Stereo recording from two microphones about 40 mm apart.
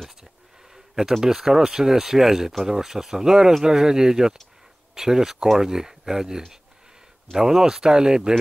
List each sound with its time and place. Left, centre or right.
1.2 s speech: centre